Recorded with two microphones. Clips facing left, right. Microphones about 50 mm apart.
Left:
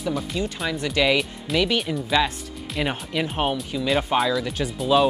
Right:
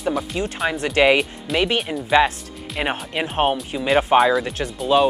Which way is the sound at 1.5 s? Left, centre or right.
Centre.